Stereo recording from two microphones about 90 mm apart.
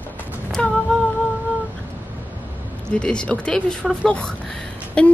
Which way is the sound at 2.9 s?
10° left (ahead or behind).